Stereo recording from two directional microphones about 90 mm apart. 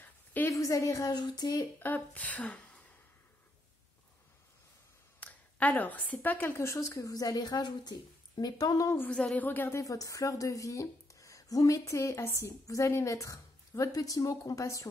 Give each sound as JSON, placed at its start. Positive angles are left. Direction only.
{"t": 0.0, "sound": "a sound", "side_deg": 20}
{"t": 0.5, "sound": "speech", "side_deg": 35}
{"t": 1.8, "sound": "speech", "side_deg": 15}
{"t": 5.2, "sound": "a woman's voice", "side_deg": 15}
{"t": 9.1, "sound": "a woman's voice", "side_deg": 15}
{"t": 9.8, "sound": "speech", "side_deg": 40}